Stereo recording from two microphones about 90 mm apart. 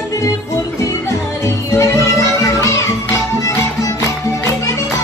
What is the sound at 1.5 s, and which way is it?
Music, 35° left (ahead or behind).